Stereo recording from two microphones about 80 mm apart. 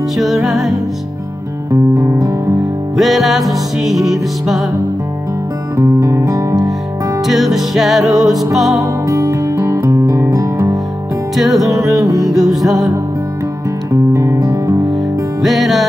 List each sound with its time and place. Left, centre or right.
0.2 s music: centre
1.7 s music: right
3.0 s music: centre
5.8 s music: right
7.2 s music: centre
8.8 s music: right
10.3 s guitar: right
11.3 s music: centre
14.1 s music: right
15.4 s music: centre